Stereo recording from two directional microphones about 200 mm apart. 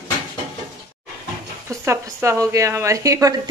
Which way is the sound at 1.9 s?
15° right (ahead or behind).